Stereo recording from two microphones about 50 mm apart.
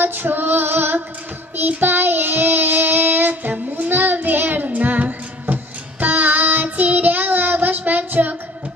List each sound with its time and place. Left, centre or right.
0.0 s female singing: right
1.7 s child singing: right